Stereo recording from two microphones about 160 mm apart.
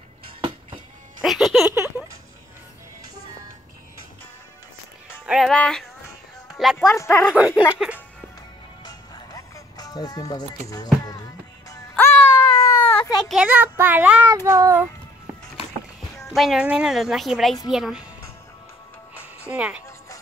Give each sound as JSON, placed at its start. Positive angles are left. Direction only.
{"t": 1.2, "sound": "music", "side_deg": 0}
{"t": 5.2, "sound": "music", "side_deg": 0}
{"t": 6.5, "sound": "speech", "side_deg": 0}
{"t": 7.0, "sound": "speech", "side_deg": 10}
{"t": 7.3, "sound": "speech", "side_deg": -10}
{"t": 8.8, "sound": "music", "side_deg": 25}
{"t": 11.9, "sound": "a sound", "side_deg": 20}
{"t": 13.3, "sound": "speech", "side_deg": -10}
{"t": 14.2, "sound": "child singing", "side_deg": -20}
{"t": 16.3, "sound": "a woman's voice", "side_deg": 0}
{"t": 19.4, "sound": "speech", "side_deg": -5}